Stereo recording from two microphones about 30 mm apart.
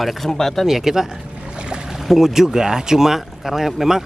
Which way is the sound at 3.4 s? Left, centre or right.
Centre.